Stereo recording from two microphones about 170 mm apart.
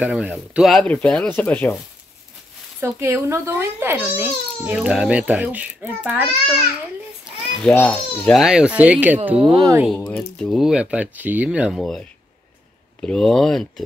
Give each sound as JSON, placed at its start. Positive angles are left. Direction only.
{"t": 0.0, "sound": "speech", "side_deg": -5}
{"t": 2.8, "sound": "a child's voice", "side_deg": -15}
{"t": 7.6, "sound": "speech", "side_deg": 5}
{"t": 9.4, "sound": "speech", "side_deg": -25}
{"t": 9.9, "sound": "speech", "side_deg": 10}